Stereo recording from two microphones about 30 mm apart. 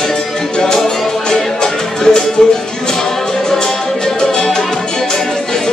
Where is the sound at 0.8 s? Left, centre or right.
Left.